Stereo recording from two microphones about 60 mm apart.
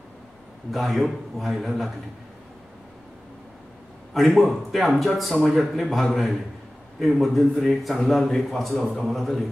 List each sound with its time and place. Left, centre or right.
0.7 s speech: centre
4.1 s speech: centre